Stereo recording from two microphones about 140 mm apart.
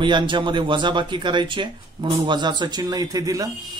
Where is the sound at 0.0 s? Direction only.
35° right (ahead or behind).